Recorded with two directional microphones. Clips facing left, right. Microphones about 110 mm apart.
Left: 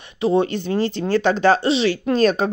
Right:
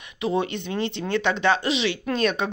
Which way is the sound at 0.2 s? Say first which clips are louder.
Left 6 dB; 35° left (ahead or behind).